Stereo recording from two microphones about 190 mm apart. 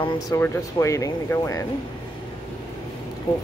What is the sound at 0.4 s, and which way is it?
Speech, 15° left (ahead or behind).